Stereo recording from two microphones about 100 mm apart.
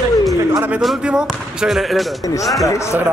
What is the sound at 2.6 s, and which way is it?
Speech, 30° left (ahead or behind).